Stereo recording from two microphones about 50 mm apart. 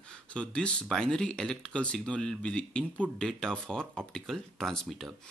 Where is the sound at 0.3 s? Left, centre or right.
Left.